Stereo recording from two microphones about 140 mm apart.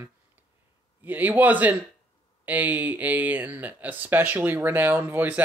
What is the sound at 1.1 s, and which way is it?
Speech, 10° right (ahead or behind).